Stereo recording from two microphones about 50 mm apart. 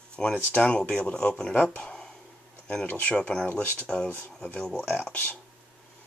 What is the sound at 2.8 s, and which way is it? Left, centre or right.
Speech, left.